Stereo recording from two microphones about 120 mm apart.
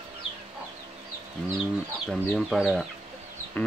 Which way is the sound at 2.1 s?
Centre (ahead or behind).